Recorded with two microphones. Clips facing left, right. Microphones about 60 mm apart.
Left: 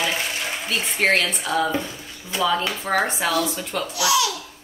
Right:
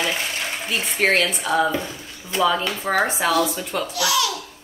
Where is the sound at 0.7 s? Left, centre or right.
Centre.